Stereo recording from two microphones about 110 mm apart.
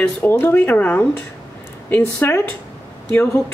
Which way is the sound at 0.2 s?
20° left (ahead or behind).